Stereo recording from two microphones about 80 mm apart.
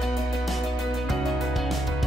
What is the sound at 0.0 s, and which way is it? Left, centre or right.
Music, centre.